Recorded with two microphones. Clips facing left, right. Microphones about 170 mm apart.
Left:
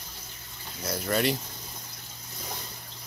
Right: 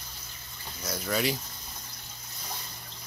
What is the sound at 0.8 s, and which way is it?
Speech, centre (ahead or behind).